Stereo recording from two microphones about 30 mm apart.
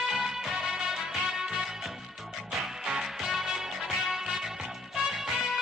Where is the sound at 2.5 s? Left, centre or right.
Centre.